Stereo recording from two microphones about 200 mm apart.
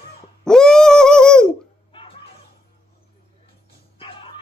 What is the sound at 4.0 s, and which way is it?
Music, 25° left (ahead or behind).